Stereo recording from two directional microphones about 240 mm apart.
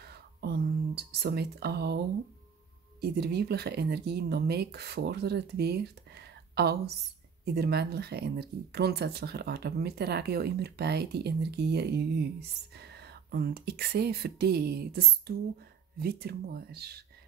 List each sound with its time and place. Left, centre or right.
0.0 s whispering: right
3.0 s speech: right